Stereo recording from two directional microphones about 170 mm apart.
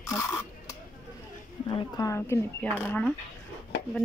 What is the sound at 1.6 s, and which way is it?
Speech, 25° left (ahead or behind).